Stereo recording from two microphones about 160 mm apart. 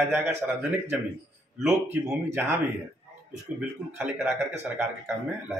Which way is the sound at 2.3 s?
15° right (ahead or behind).